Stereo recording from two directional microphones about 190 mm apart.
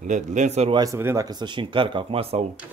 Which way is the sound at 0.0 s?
40° right (ahead or behind).